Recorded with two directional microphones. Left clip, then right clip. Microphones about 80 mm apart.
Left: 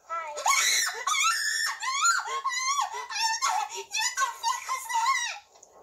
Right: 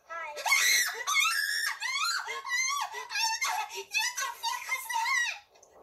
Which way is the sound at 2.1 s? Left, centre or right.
Centre.